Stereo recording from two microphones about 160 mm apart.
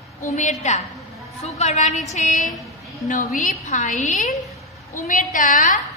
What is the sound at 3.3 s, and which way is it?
Speech, 50° left (ahead or behind).